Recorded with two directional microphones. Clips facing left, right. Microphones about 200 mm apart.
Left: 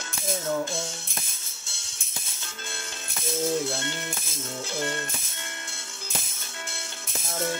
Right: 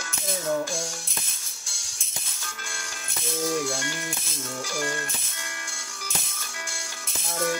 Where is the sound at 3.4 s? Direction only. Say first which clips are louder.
Even; 25° left (ahead or behind).